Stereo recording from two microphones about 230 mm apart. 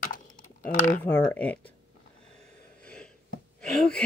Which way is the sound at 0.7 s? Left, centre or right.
Left.